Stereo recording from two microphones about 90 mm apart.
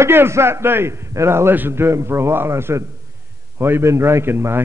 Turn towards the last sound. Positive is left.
turn(degrees=-25)  # may be behind; listen again after turning